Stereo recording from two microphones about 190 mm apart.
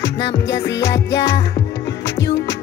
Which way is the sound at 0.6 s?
70° left (ahead or behind).